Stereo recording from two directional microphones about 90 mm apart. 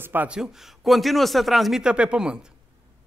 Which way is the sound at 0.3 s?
5° right (ahead or behind).